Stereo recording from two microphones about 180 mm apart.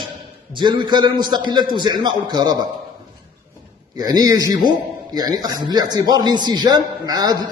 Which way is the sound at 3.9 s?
20° right (ahead or behind).